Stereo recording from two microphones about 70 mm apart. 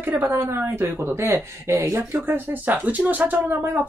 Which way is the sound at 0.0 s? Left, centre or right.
Right.